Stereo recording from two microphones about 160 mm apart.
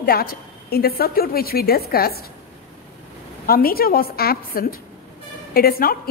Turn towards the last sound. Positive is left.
turn(degrees=70)  # may be behind; listen again after turning